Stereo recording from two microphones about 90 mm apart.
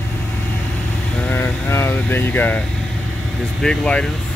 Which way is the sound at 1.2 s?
20° left (ahead or behind).